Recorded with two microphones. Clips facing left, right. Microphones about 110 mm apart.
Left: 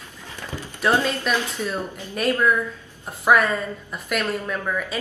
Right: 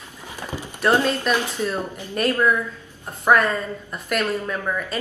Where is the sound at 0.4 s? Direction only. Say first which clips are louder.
Right 2 dB; 15° right (ahead or behind).